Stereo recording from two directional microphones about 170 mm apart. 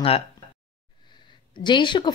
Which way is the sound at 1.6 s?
30° left (ahead or behind).